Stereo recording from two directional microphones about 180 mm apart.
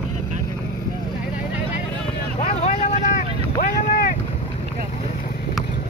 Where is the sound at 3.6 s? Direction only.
55° left (ahead or behind).